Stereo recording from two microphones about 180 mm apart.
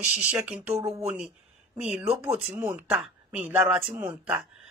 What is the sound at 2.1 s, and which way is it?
Speech, 35° right (ahead or behind).